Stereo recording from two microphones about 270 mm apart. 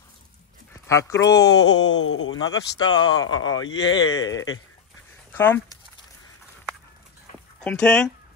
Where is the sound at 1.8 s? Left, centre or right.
Left.